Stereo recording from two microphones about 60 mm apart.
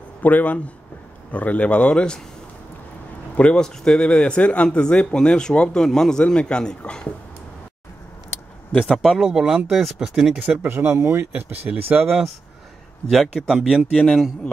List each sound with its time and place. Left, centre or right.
0.2 s a man's voice: left
3.3 s a man's voice: centre
8.8 s a man's voice: centre
9.1 s speech: centre
10.4 s speech: right
10.9 s speech: right
11.7 s speech: right
13.1 s a man's voice: centre